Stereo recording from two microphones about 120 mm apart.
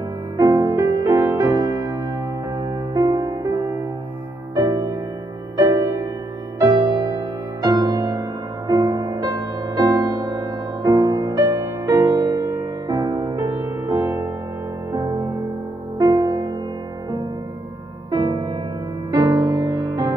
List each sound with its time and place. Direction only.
0.4 s music: 30° right (ahead or behind)
18.1 s music: 40° right (ahead or behind)